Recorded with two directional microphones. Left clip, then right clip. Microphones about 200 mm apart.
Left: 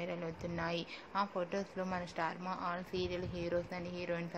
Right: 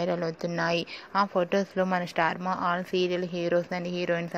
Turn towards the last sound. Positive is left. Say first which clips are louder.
# right 11 dB
turn(degrees=-35)  # may be behind; listen again after turning